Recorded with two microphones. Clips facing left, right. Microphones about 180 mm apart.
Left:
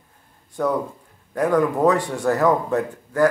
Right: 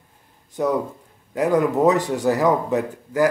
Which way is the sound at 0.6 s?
15° right (ahead or behind).